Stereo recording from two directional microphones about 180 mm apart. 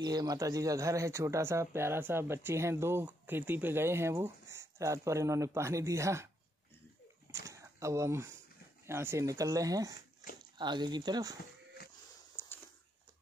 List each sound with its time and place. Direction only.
0.0 s speech: 20° right (ahead or behind)
7.2 s speech: 15° right (ahead or behind)
12.4 s a sound: 15° left (ahead or behind)